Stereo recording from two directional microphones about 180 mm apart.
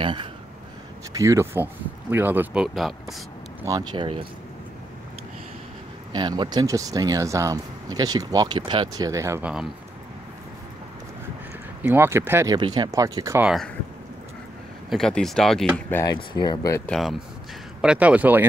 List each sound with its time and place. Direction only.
0.0 s speech: 25° right (ahead or behind)
1.1 s speech: 15° right (ahead or behind); by 3.2 s centre (ahead or behind)
3.6 s speech: 25° right (ahead or behind)
6.1 s speech: 25° right (ahead or behind); by 9.7 s 5° right (ahead or behind)
11.8 s speech: 10° right (ahead or behind)
12.5 s speech: 25° right (ahead or behind)
13.4 s speech: 5° right (ahead or behind)
14.9 s speech: 5° left (ahead or behind)
15.9 s speech: 20° left (ahead or behind)
16.8 s speech: centre (ahead or behind)